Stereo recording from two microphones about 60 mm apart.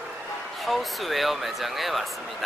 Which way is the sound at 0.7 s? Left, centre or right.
Centre.